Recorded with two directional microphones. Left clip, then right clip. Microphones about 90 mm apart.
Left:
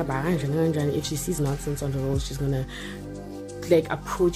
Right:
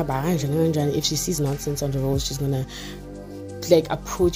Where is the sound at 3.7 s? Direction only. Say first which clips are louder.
Right 3 dB; 30° right (ahead or behind).